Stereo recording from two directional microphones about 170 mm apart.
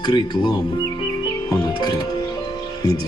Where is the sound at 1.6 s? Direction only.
25° left (ahead or behind).